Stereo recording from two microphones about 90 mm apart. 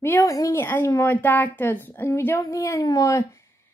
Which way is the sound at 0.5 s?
25° left (ahead or behind).